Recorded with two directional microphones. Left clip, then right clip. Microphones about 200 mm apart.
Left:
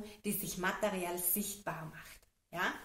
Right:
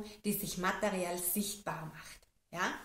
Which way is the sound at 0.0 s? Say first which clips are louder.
Right 2 dB; centre (ahead or behind).